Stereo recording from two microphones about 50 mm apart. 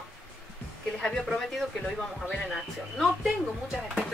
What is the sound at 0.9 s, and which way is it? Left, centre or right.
A woman's voice, centre.